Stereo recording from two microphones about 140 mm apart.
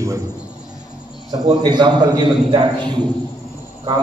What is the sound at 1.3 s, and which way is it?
A man's voice, 30° right (ahead or behind).